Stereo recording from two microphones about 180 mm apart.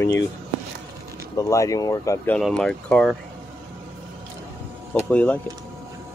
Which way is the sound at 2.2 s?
5° left (ahead or behind).